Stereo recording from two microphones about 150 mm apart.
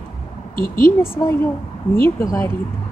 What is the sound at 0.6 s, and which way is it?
Speech, 75° left (ahead or behind).